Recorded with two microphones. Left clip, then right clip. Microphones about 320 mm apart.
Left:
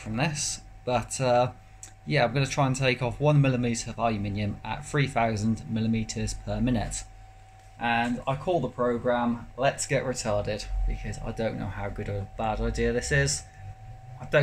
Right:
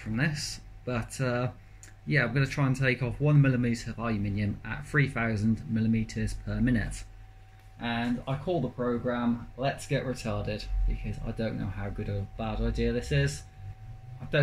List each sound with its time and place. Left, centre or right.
0.1 s speech: centre
7.8 s speech: left
9.6 s speech: left